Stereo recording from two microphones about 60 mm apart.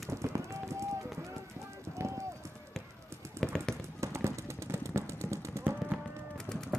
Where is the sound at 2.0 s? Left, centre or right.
Right.